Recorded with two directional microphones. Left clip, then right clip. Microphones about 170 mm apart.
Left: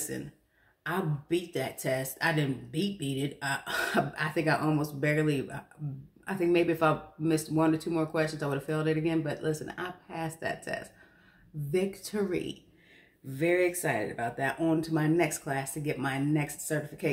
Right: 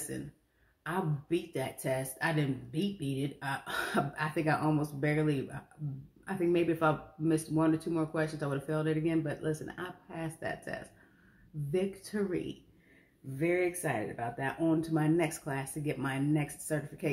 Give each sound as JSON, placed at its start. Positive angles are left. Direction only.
{"t": 0.8, "sound": "speech", "side_deg": 5}